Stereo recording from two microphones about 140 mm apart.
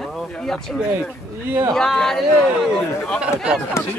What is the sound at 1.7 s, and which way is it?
Speech, 5° left (ahead or behind).